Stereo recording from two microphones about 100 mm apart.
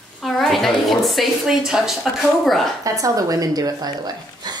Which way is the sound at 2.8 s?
35° right (ahead or behind).